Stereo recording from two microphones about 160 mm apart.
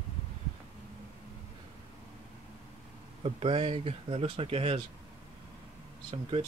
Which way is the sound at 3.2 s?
35° right (ahead or behind).